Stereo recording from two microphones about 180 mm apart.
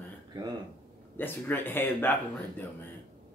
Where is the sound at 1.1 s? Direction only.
10° left (ahead or behind).